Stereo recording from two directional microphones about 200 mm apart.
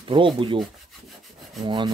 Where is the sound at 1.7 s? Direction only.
20° right (ahead or behind).